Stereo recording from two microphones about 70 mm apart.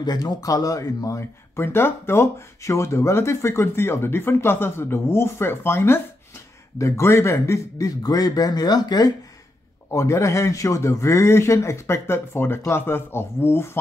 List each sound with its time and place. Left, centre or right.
0.0 s a man's voice: left
1.6 s a man's voice: left
9.8 s speech: left